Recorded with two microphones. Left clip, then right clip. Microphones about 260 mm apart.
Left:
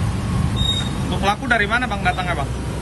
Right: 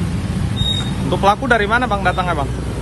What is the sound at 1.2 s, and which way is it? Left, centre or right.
Speech, centre.